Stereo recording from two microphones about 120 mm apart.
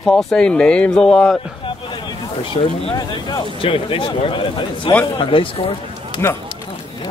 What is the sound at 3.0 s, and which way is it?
Speech, 35° left (ahead or behind).